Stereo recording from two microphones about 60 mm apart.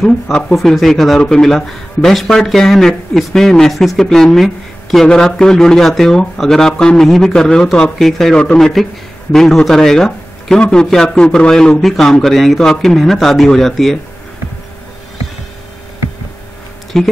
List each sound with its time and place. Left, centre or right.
0.0 s a man's voice: centre
0.6 s a man's voice: centre
16.9 s a man's voice: centre